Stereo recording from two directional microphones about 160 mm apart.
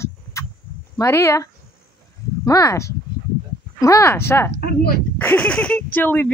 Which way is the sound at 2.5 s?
20° left (ahead or behind).